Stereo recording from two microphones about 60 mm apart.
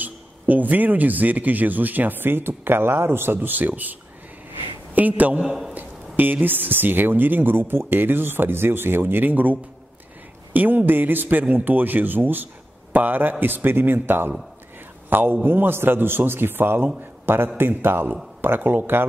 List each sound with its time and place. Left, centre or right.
0.0 s a man's voice: right
3.3 s a man's voice: right
4.9 s a man's voice: right
5.4 s a man's voice: centre
5.8 s a man's voice: right